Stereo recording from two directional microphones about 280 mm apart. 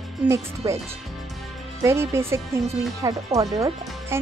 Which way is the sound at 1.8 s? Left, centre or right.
Centre.